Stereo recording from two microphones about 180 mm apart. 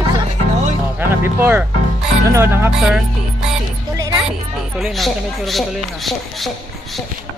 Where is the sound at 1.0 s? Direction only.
10° right (ahead or behind).